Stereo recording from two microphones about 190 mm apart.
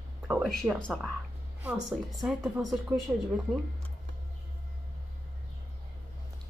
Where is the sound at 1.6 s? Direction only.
10° right (ahead or behind).